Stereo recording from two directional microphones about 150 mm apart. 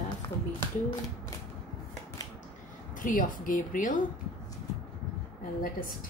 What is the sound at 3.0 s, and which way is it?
Speech, 65° left (ahead or behind).